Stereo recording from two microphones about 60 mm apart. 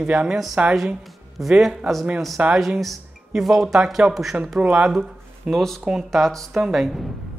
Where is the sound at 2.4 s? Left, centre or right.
Right.